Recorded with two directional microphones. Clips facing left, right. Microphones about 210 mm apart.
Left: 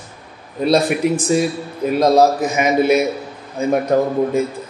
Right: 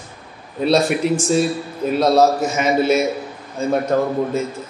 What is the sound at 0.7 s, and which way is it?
A man's voice, 15° left (ahead or behind).